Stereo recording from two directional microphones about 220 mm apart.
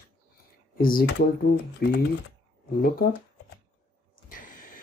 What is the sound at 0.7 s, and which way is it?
Speech, 40° left (ahead or behind).